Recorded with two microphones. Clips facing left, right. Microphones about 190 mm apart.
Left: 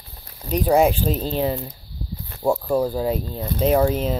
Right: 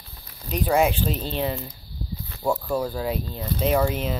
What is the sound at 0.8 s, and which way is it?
Speech, 40° left (ahead or behind).